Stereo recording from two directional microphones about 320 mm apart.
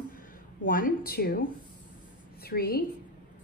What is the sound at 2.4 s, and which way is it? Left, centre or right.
Speech, left.